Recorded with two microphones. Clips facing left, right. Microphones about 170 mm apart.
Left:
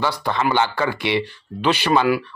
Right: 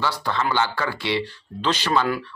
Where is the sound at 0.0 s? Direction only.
15° left (ahead or behind).